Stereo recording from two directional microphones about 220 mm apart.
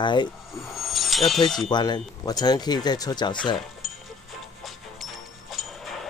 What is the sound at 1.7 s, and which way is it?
Speech, 20° left (ahead or behind).